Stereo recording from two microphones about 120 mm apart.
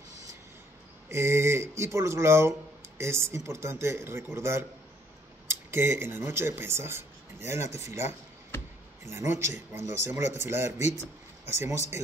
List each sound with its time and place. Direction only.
1.0 s speech: 20° right (ahead or behind)